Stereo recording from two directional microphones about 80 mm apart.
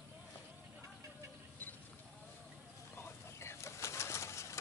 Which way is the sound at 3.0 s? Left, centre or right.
Left.